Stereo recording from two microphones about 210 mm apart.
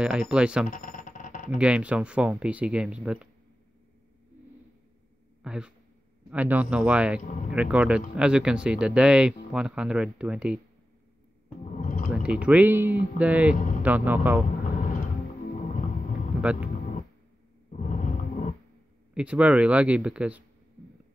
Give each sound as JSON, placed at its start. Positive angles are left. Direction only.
{"t": 0.0, "sound": "speech", "side_deg": -5}
{"t": 0.7, "sound": "a sound", "side_deg": 40}
{"t": 1.6, "sound": "speech", "side_deg": -5}
{"t": 5.4, "sound": "speech", "side_deg": -5}
{"t": 11.7, "sound": "music", "side_deg": 40}
{"t": 12.2, "sound": "speech", "side_deg": -5}
{"t": 15.6, "sound": "vehicle", "side_deg": 35}
{"t": 16.3, "sound": "speech", "side_deg": -5}
{"t": 17.7, "sound": "a sound", "side_deg": 40}
{"t": 19.1, "sound": "speech", "side_deg": -5}